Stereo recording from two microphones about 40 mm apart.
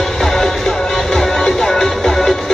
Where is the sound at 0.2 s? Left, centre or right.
Centre.